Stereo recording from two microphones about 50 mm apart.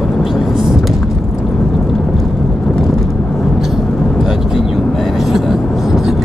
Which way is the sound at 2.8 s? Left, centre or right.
Centre.